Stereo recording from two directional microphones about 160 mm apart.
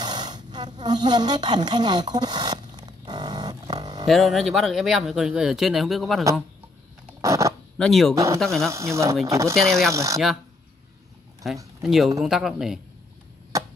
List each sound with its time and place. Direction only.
0.0 s a sound: 25° right (ahead or behind)
4.1 s speech: centre (ahead or behind)
7.2 s a sound: 20° right (ahead or behind)
7.7 s speech: centre (ahead or behind)
8.1 s speech: 20° right (ahead or behind)
8.4 s speech: centre (ahead or behind)
8.6 s speech: 20° right (ahead or behind)
9.6 s speech: centre (ahead or behind)
9.9 s speech: 20° right (ahead or behind)
11.4 s speech: centre (ahead or behind)